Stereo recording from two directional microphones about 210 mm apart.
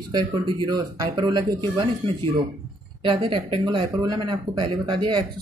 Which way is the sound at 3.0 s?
25° right (ahead or behind).